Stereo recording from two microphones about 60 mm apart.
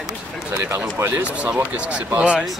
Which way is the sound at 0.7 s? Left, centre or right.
Right.